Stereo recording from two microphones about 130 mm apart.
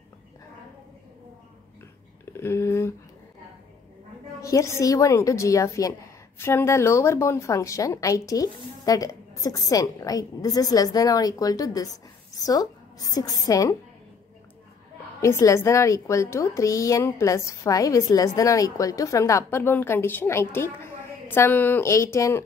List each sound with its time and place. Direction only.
2.3 s a sound: 20° left (ahead or behind)
4.4 s a woman's voice: 25° left (ahead or behind)
15.2 s a woman's voice: 20° left (ahead or behind)